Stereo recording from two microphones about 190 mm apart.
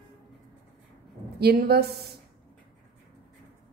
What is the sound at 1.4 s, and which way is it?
Speech, 55° right (ahead or behind).